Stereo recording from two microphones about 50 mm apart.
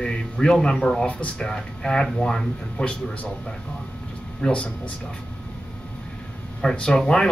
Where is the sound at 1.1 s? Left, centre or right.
Left.